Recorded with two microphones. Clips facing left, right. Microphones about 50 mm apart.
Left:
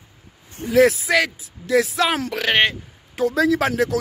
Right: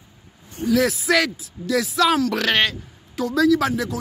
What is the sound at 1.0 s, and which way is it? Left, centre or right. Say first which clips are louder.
Speech: even; centre.